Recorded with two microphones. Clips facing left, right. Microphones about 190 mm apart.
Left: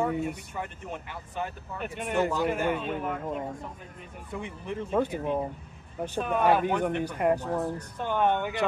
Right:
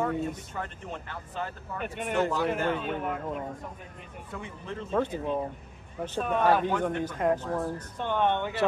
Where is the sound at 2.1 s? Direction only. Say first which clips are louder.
Left 1 dB; 10° left (ahead or behind).